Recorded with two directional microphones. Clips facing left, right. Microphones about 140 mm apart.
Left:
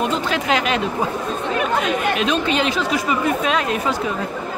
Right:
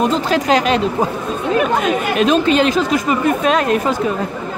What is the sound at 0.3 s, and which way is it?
Speech, 40° right (ahead or behind).